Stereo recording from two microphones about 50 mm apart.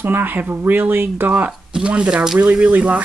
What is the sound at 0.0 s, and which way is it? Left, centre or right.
Speech, right.